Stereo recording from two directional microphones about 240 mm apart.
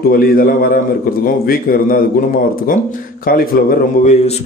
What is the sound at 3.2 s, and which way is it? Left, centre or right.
Speech, left.